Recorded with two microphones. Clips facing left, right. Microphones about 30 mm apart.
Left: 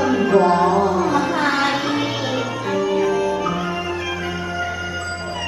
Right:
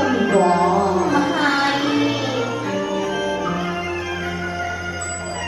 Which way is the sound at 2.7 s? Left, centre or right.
Left.